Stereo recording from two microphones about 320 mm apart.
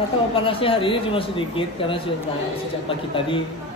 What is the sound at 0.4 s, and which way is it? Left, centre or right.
Speech, centre.